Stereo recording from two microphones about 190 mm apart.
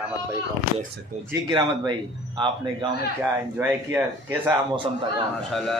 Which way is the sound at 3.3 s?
10° right (ahead or behind).